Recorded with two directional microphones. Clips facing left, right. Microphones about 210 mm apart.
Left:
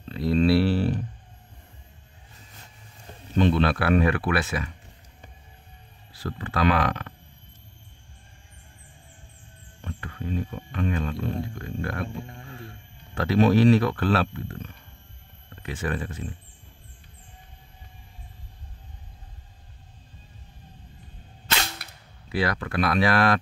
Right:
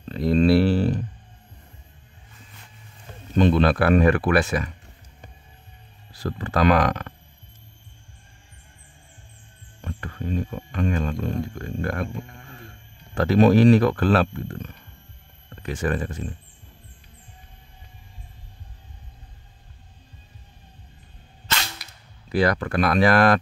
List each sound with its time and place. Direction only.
0.1 s a sound: 45° right (ahead or behind)
3.3 s speech: 45° right (ahead or behind)
6.1 s speech: 40° right (ahead or behind)
9.8 s speech: 40° right (ahead or behind)
13.1 s speech: 45° right (ahead or behind)
21.8 s cap gun: 60° left (ahead or behind)
22.3 s speech: 45° right (ahead or behind)